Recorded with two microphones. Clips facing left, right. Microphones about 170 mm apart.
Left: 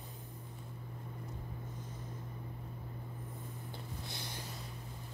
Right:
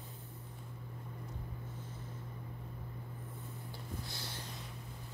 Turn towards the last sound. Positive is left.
turn(degrees=15)  # may be behind; listen again after turning